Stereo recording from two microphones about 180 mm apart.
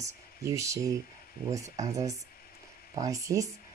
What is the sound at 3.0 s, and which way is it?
Speech, 20° right (ahead or behind).